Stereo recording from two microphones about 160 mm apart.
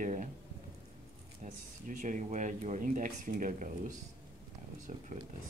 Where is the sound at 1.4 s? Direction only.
55° right (ahead or behind).